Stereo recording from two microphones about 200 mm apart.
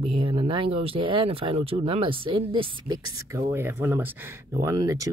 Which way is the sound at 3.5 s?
10° right (ahead or behind).